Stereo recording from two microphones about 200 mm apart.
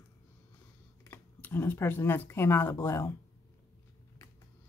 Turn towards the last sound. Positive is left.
turn(degrees=15)  # may be behind; listen again after turning